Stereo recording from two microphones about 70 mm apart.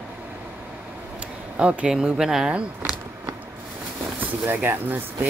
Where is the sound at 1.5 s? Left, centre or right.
Centre.